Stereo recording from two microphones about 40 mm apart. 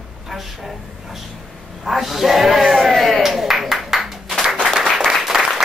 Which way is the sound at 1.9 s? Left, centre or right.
Centre.